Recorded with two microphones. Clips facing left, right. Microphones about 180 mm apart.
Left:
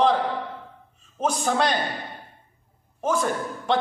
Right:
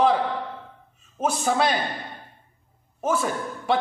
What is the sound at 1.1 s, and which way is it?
Speech, 5° right (ahead or behind).